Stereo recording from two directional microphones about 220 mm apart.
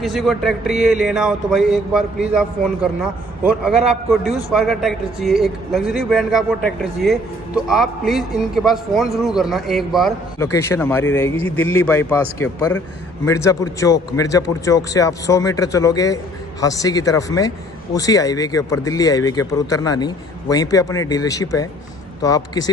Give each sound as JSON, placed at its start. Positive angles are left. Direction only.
{"t": 0.0, "sound": "a man's voice", "side_deg": 0}
{"t": 10.4, "sound": "speech", "side_deg": 10}